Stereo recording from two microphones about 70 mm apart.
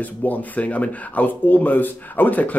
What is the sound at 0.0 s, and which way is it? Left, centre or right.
Speech, left.